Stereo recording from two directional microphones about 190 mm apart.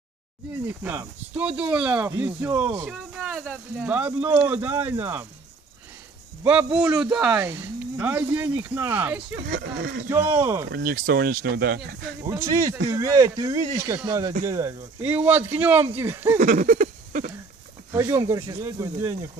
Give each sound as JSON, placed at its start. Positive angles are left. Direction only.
{"t": 0.7, "sound": "speech", "side_deg": -10}
{"t": 2.9, "sound": "speech", "side_deg": -5}
{"t": 6.4, "sound": "speech", "side_deg": -5}
{"t": 9.6, "sound": "speech", "side_deg": -55}
{"t": 10.0, "sound": "speech", "side_deg": -10}
{"t": 10.7, "sound": "speech", "side_deg": -50}
{"t": 12.3, "sound": "speech", "side_deg": -15}
{"t": 16.3, "sound": "a sound", "side_deg": -45}
{"t": 17.9, "sound": "speech", "side_deg": -15}